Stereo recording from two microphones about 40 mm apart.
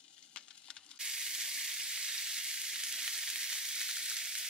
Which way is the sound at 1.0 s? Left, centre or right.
Centre.